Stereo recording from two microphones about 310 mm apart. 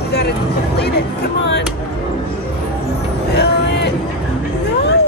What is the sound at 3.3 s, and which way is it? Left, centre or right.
Vehicle, left.